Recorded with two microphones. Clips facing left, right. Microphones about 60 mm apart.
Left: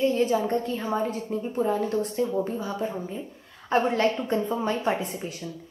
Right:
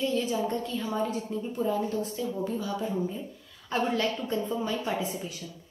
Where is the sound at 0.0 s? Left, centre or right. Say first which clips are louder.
Left 5 dB; left.